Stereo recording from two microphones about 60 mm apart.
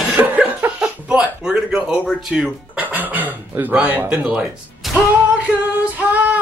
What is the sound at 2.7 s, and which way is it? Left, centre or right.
A man's voice, right.